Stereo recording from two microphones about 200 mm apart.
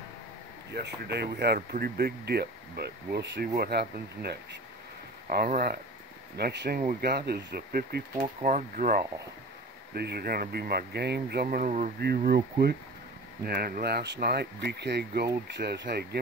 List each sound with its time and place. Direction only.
0.7 s speech: 55° right (ahead or behind)
13.4 s speech: 50° right (ahead or behind)